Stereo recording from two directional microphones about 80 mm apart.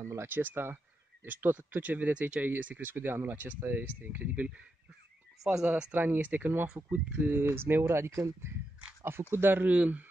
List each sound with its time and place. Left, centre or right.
0.0 s speech: right
5.4 s speech: centre
5.9 s speech: right